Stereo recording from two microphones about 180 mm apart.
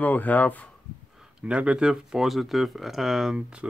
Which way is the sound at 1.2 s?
5° right (ahead or behind).